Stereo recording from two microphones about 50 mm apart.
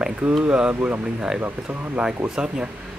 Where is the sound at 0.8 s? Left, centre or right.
Right.